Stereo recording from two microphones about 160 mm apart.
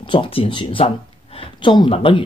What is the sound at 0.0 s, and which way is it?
Speech, 30° left (ahead or behind).